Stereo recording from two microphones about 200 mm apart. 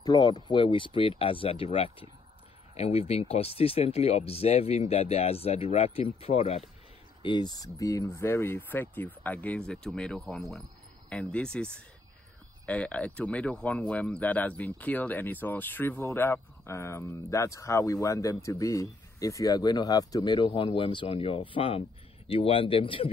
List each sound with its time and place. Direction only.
0.0 s speech: 20° left (ahead or behind)